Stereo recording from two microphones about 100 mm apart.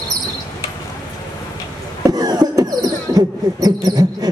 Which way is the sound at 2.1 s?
40° right (ahead or behind).